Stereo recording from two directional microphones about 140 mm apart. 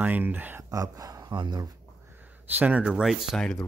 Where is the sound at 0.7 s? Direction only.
25° right (ahead or behind).